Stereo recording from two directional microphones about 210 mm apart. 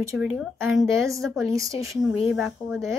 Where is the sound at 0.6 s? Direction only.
10° right (ahead or behind).